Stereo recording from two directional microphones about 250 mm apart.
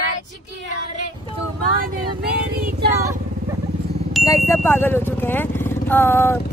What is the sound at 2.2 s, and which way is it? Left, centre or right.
Speech, right.